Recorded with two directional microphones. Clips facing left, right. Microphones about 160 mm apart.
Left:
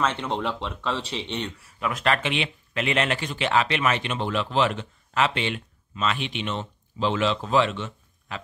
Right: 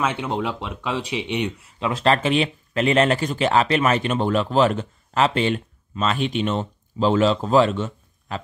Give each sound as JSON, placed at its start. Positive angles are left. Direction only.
{"t": 0.0, "sound": "speech", "side_deg": -10}
{"t": 1.8, "sound": "speech", "side_deg": -30}